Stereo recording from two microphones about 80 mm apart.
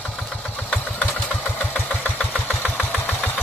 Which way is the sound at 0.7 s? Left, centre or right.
Centre.